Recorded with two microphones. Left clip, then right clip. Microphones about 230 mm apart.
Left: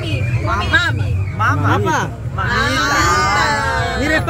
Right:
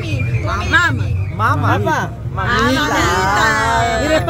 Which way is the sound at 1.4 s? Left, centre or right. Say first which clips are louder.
Right 1 dB; right.